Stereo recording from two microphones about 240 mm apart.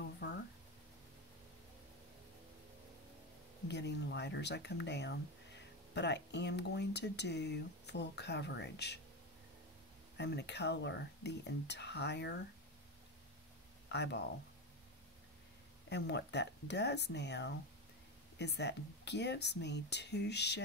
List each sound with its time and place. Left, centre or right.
0.2 s a sound: left
3.6 s speech: left
10.1 s speech: left
13.8 s speech: left
15.9 s speech: left